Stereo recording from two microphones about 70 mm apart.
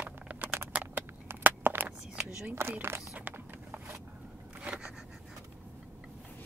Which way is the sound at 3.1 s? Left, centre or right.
Right.